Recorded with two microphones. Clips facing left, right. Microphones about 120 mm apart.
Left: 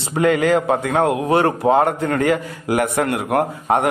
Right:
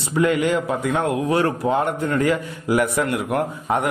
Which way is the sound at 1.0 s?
60° left (ahead or behind).